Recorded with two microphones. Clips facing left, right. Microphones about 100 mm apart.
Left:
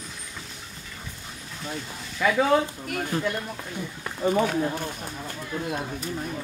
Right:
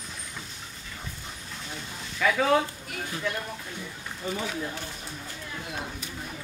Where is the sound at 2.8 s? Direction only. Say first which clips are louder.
Left 7 dB; 55° left (ahead or behind).